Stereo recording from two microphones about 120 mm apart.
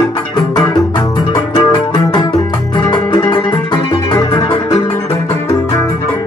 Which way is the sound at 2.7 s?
40° left (ahead or behind).